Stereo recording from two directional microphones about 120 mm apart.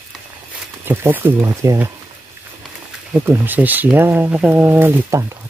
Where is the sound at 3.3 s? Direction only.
15° right (ahead or behind).